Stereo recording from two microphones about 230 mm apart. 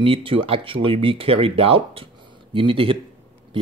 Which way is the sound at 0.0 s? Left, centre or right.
Right.